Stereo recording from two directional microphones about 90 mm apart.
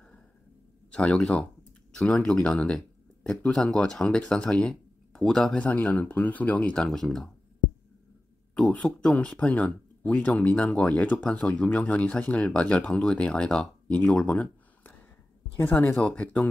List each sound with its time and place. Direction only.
0.9 s speech: 10° left (ahead or behind)
8.5 s speech: 5° left (ahead or behind)